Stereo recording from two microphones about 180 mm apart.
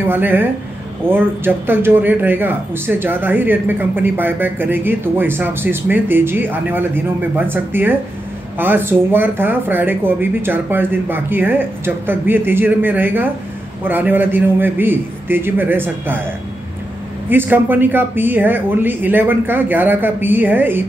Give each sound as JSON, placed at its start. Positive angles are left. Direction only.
{"t": 0.0, "sound": "speech", "side_deg": -10}
{"t": 17.3, "sound": "speech", "side_deg": -10}